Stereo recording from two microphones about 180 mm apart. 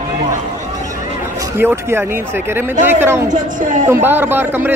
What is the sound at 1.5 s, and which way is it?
A man's voice, 15° right (ahead or behind).